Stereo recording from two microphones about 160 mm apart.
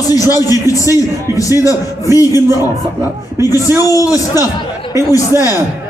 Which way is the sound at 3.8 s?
20° left (ahead or behind).